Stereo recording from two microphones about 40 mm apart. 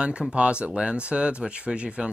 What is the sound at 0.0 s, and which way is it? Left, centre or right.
Speech, right.